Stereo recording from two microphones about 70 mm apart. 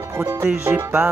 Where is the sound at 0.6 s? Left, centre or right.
Right.